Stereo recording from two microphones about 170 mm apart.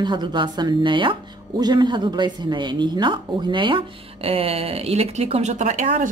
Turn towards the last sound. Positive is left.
turn(degrees=-45)  # may be behind; listen again after turning